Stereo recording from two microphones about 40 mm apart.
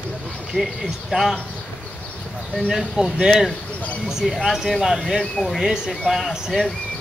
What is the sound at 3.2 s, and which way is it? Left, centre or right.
Speech, centre.